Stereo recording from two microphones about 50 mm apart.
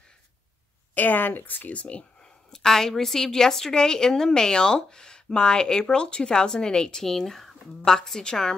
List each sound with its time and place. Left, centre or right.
0.9 s a woman's voice: left
1.7 s speech: left
2.5 s a woman's voice: centre